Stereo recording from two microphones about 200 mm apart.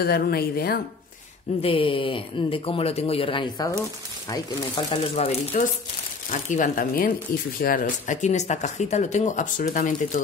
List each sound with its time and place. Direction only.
0.0 s speech: 50° left (ahead or behind)
1.6 s speech: 25° left (ahead or behind)